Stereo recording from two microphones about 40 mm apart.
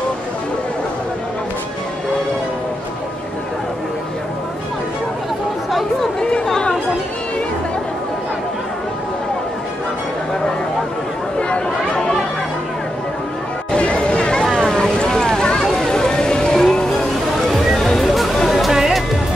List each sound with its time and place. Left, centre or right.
11.3 s chatter: left
13.7 s a sound: left
15.9 s boat: centre
17.4 s music: centre